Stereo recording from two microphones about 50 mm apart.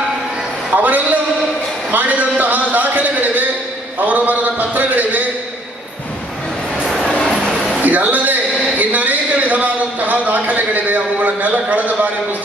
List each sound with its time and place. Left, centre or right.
0.7 s a sound: right
1.9 s a man's voice: right
6.9 s vehicle: centre
7.8 s a man's voice: right